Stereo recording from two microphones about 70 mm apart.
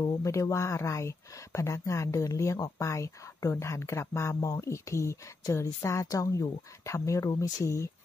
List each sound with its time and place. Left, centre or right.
0.2 s speech: left